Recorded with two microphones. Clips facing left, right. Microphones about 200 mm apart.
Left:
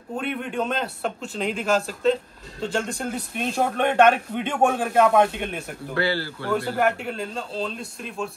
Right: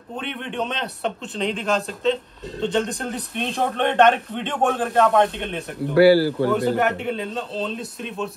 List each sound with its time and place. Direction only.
0.2 s a man's voice: 5° left (ahead or behind)
5.9 s speech: 10° right (ahead or behind)
6.8 s a man's voice: centre (ahead or behind)